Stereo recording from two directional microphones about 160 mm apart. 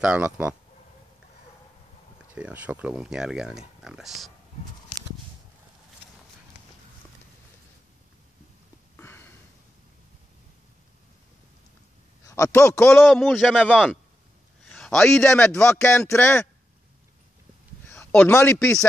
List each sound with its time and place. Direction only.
0.0 s speech: 5° right (ahead or behind)
2.3 s speech: 10° right (ahead or behind)
8.9 s sniff: 15° left (ahead or behind)
12.3 s speech: 20° left (ahead or behind)
12.8 s a man's voice: centre (ahead or behind)
15.1 s speech: 15° left (ahead or behind)
17.8 s a sound: 10° left (ahead or behind)
18.3 s speech: 15° left (ahead or behind)